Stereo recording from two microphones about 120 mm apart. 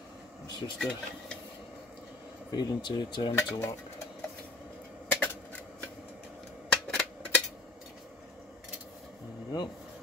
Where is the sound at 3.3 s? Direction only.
25° left (ahead or behind).